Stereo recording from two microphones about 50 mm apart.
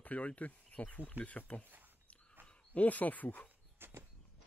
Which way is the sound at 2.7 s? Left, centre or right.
Left.